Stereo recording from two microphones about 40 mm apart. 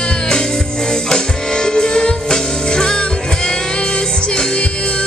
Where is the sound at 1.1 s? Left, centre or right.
Centre.